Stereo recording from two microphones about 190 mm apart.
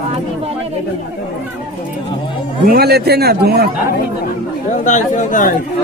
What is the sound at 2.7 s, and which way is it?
A man's voice, 55° right (ahead or behind).